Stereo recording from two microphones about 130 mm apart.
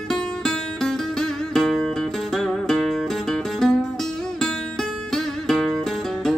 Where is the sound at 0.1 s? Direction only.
5° left (ahead or behind).